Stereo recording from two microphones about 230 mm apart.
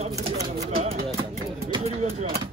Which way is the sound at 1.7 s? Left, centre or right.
Right.